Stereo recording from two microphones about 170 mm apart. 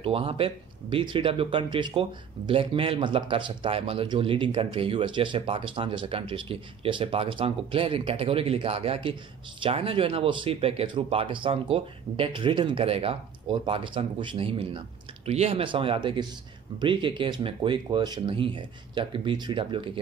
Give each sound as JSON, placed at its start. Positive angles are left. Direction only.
{"t": 0.0, "sound": "speech", "side_deg": -35}